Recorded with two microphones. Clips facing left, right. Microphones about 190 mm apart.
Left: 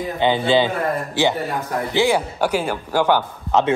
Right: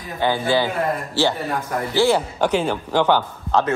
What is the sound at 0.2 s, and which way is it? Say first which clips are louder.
A man's voice: left 2 dB; 20° left (ahead or behind).